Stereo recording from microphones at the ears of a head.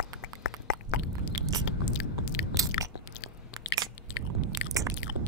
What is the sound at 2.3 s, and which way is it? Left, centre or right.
Chewing, left.